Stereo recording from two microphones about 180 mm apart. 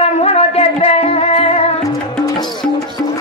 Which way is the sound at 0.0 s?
35° left (ahead or behind).